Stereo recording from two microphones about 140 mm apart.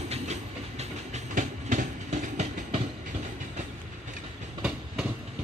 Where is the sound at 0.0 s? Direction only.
50° right (ahead or behind).